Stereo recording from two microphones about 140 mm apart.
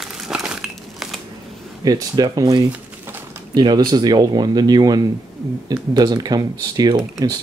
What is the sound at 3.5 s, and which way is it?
Speech, 30° right (ahead or behind).